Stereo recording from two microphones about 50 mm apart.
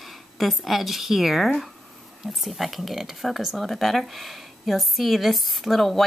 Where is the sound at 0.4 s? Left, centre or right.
Centre.